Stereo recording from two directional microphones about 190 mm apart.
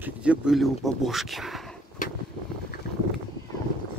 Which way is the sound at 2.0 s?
45° left (ahead or behind).